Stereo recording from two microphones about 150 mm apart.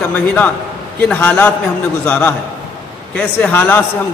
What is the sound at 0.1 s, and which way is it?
A man's voice, 10° left (ahead or behind).